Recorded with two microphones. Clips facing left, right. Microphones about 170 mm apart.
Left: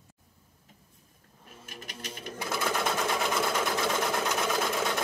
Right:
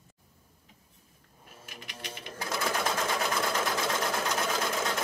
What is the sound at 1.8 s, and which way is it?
Music, 45° left (ahead or behind).